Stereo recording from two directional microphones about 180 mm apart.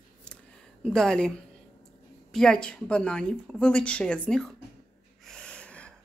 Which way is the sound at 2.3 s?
5° left (ahead or behind).